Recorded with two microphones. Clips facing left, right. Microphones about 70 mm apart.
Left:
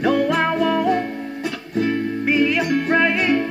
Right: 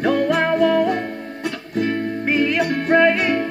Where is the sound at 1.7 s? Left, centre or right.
Right.